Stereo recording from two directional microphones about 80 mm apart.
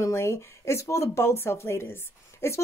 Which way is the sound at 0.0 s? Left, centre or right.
Left.